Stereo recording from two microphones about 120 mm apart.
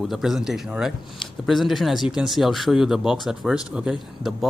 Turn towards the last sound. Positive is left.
turn(degrees=0)  # may be behind; listen again after turning